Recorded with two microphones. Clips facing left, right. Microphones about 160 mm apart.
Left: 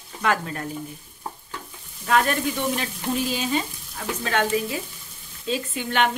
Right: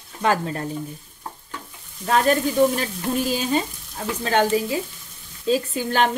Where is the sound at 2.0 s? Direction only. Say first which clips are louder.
Right 3 dB; 35° right (ahead or behind).